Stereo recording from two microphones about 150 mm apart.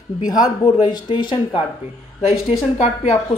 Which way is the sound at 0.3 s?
25° left (ahead or behind).